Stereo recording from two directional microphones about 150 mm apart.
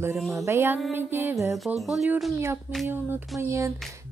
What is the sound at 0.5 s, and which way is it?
Music, 15° right (ahead or behind).